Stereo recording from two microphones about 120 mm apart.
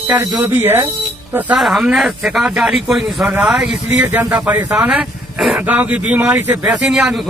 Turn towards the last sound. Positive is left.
turn(degrees=-5)  # may be behind; listen again after turning